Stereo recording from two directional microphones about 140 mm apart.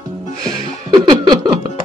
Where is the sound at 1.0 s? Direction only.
35° right (ahead or behind).